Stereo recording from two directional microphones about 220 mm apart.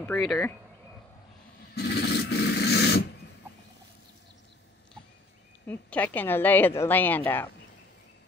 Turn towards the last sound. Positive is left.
turn(degrees=10)  # may be behind; listen again after turning